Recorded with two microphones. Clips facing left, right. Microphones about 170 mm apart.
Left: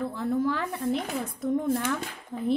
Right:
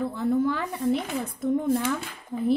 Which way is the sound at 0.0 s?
Centre (ahead or behind).